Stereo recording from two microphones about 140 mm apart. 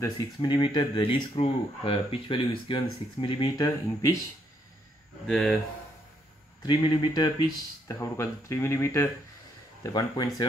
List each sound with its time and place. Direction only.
0.4 s speech: 35° left (ahead or behind)
3.6 s speech: 25° left (ahead or behind)
5.2 s speech: centre (ahead or behind)
6.6 s speech: 30° left (ahead or behind)